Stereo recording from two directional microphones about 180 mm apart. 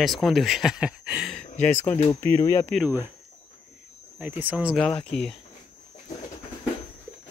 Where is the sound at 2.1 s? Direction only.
15° left (ahead or behind).